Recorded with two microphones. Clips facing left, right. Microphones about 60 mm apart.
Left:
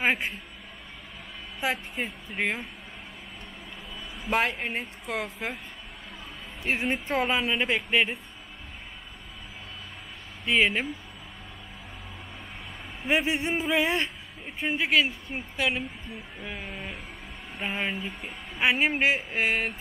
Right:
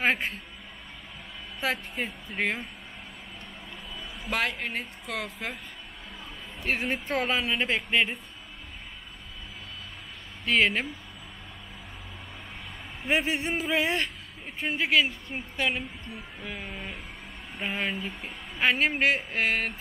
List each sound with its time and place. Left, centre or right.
0.0 s speech: centre
1.6 s speech: centre
2.0 s speech: centre
4.3 s speech: left
6.6 s speech: centre
10.4 s speech: centre
13.1 s speech: centre
14.4 s speech: centre